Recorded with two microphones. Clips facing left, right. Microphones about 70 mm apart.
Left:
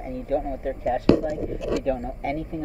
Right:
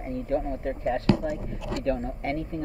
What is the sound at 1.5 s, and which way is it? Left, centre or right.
Speech, left.